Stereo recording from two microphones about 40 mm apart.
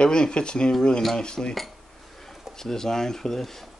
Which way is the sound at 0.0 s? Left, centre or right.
Left.